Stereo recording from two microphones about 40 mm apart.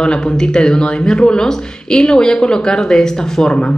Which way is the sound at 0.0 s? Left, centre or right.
Left.